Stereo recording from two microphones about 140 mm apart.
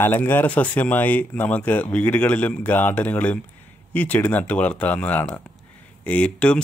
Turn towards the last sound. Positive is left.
turn(degrees=10)  # may be behind; listen again after turning